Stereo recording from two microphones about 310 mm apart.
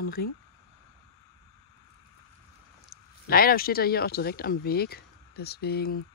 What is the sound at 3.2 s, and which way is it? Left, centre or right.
Speech, left.